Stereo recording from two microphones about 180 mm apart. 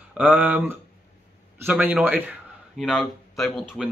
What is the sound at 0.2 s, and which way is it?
Speech, 10° right (ahead or behind).